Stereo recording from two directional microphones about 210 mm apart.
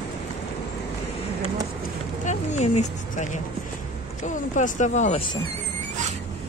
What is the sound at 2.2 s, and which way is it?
Speech, 35° left (ahead or behind).